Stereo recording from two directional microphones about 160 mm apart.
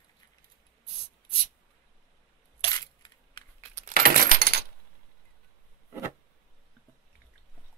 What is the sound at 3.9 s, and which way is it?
Keys jangling, 65° right (ahead or behind).